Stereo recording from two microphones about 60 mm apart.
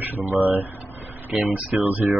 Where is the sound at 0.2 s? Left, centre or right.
Right.